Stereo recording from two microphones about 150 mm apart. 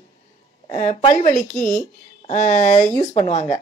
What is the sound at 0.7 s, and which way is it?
Speech, 55° left (ahead or behind).